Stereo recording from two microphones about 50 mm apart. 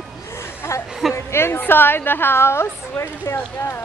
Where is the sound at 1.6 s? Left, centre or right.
Left.